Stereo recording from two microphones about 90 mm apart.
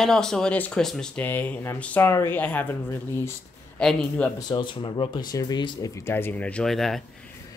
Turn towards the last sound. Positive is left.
turn(degrees=5)  # may be behind; listen again after turning